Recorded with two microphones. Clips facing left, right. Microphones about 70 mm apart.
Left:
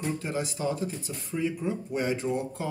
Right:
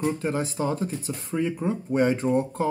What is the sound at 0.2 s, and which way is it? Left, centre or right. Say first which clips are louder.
Speech: right 4 dB; right.